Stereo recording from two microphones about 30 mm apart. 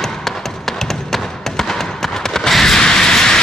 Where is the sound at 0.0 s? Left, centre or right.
Centre.